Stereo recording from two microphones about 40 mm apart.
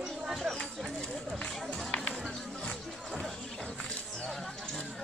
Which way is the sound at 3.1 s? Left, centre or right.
Centre.